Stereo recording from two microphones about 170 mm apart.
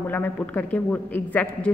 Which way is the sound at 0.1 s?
10° left (ahead or behind).